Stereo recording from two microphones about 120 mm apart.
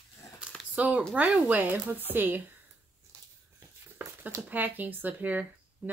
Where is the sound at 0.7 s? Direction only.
10° right (ahead or behind).